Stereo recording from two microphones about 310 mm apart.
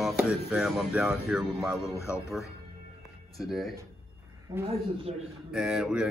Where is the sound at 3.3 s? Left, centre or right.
Centre.